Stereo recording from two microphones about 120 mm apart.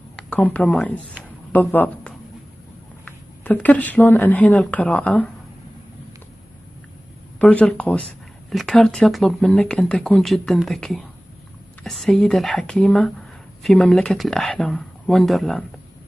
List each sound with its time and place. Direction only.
0.3 s a woman's voice: 10° left (ahead or behind)
7.3 s speech: 10° left (ahead or behind)